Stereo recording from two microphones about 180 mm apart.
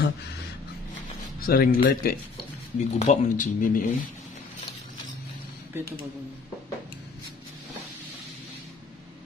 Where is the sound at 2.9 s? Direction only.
45° left (ahead or behind).